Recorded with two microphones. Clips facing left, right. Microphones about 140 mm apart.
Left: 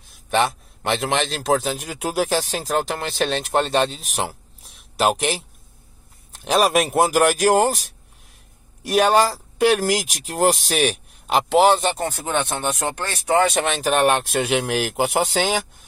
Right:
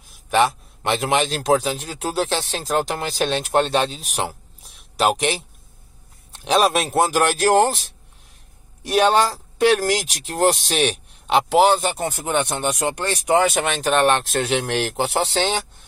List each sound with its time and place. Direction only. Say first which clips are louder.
0.1 s a man's voice: right 2 dB; centre (ahead or behind)
1.9 s speech: left 3 dB; 10° left (ahead or behind)
8.8 s speech: even; 5° left (ahead or behind)
12.0 s speech: right 1 dB; 15° right (ahead or behind)
13.5 s speech: even; centre (ahead or behind)